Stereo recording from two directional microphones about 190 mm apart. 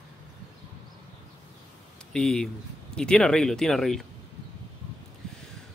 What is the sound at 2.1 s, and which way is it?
Speech, 5° left (ahead or behind).